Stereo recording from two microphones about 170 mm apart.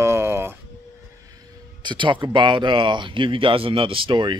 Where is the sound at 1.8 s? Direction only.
25° right (ahead or behind).